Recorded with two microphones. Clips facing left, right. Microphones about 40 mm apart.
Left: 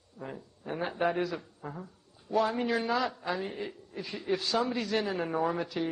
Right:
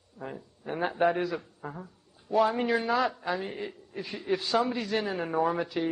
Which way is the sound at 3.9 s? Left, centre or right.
Centre.